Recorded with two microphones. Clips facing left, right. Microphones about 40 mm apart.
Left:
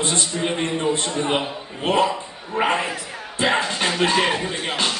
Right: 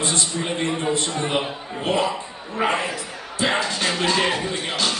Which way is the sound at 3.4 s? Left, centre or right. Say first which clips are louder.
Left 2 dB; left.